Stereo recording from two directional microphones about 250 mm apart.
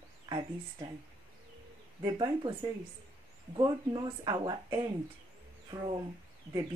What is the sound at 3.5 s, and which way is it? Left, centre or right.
Speech, centre.